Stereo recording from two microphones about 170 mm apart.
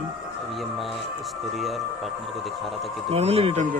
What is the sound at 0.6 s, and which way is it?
Speech, centre (ahead or behind).